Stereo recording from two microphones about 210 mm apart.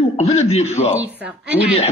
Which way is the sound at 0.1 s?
30° left (ahead or behind).